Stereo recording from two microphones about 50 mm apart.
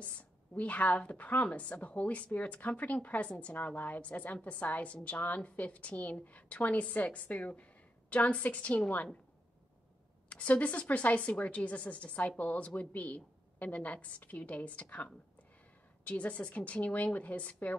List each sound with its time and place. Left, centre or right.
0.0 s a woman's voice: left
10.3 s a woman's voice: left